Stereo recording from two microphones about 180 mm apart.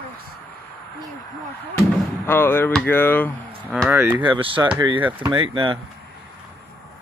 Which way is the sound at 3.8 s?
10° right (ahead or behind).